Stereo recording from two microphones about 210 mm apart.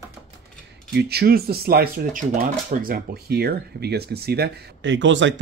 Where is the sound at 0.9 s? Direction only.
50° right (ahead or behind).